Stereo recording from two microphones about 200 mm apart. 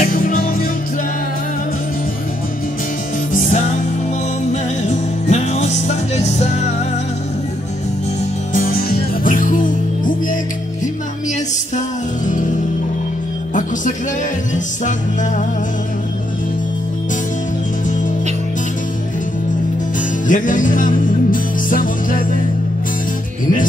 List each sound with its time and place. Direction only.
0.0 s music: 45° left (ahead or behind)
3.3 s music: 40° left (ahead or behind)
5.3 s music: 35° left (ahead or behind)
8.5 s music: 45° left (ahead or behind)
12.3 s music: 40° left (ahead or behind)
14.5 s music: 40° left (ahead or behind)
20.2 s music: 40° left (ahead or behind)